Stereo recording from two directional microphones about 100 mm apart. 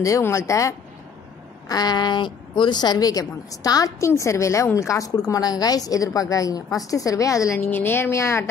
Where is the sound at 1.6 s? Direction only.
40° left (ahead or behind).